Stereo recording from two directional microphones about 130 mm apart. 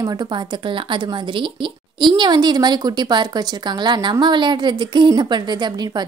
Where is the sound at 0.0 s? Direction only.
30° right (ahead or behind).